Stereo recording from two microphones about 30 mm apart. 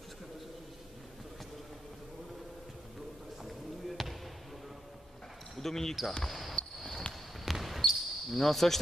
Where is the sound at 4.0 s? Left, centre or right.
Centre.